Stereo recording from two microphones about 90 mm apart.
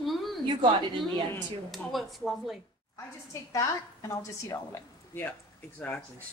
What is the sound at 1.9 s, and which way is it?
Speech, centre (ahead or behind).